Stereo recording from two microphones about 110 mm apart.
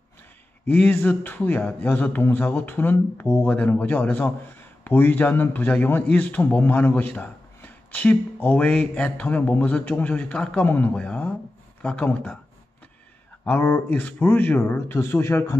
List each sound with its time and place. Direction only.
0.7 s a man's voice: 15° left (ahead or behind)
13.6 s a man's voice: 15° left (ahead or behind)